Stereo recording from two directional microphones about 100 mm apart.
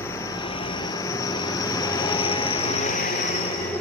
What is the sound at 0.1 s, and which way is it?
Vehicle, 35° left (ahead or behind).